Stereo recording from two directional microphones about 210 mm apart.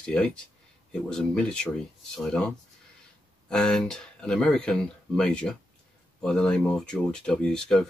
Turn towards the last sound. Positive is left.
turn(degrees=5)  # may be behind; listen again after turning